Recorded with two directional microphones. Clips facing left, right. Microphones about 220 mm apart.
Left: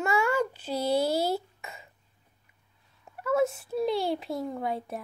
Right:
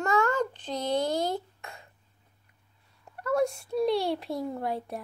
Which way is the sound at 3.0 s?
5° left (ahead or behind).